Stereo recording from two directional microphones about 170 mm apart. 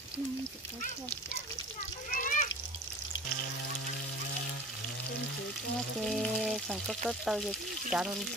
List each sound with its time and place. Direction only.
2.0 s a sound: 50° left (ahead or behind)
6.0 s frying: centre (ahead or behind)
7.1 s speech: centre (ahead or behind)